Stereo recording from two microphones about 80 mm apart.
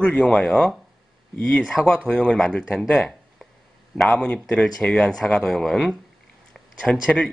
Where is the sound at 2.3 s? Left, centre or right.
Centre.